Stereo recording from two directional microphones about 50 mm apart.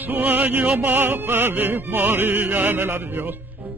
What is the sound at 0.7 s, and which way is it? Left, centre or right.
Music, right.